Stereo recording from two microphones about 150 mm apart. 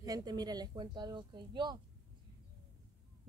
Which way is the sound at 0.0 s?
25° right (ahead or behind).